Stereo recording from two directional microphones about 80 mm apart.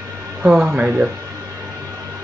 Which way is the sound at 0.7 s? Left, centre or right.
Centre.